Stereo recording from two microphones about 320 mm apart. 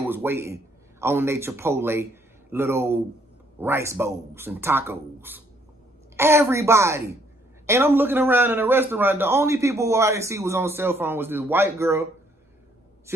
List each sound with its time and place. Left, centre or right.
0.0 s a man's voice: centre